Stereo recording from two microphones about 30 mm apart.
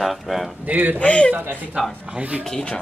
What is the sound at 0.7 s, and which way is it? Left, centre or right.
Speech, right.